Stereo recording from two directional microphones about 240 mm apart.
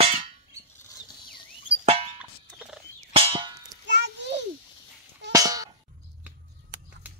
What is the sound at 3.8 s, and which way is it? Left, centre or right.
Music, right.